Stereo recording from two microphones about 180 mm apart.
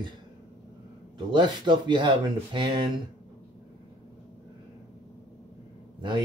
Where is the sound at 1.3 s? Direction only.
25° right (ahead or behind).